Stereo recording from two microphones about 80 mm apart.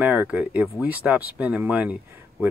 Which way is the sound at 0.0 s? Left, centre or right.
Right.